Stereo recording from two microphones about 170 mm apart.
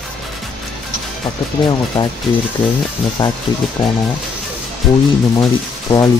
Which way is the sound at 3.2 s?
30° left (ahead or behind).